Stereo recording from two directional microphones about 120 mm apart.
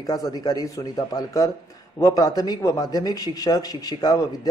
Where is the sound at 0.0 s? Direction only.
30° left (ahead or behind).